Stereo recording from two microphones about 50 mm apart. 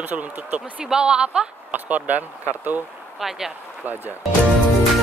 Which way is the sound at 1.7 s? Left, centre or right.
Right.